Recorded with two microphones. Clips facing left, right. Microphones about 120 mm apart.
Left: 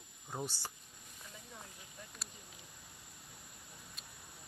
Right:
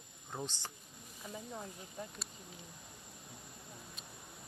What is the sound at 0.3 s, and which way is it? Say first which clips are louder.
Speech: left 1 dB; 10° left (ahead or behind).